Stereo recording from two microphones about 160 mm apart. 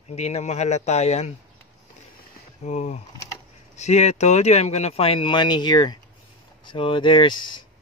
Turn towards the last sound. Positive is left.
turn(degrees=30)  # may be behind; listen again after turning